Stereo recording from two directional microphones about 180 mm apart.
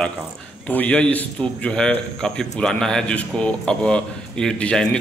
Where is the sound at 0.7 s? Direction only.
10° left (ahead or behind).